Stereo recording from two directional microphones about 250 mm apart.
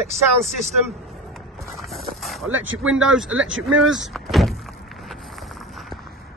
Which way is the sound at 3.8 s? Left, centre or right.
Right.